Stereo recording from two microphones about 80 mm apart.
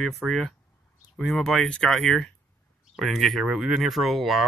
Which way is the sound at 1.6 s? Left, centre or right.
Centre.